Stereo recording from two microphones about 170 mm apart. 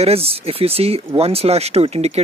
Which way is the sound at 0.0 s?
35° right (ahead or behind).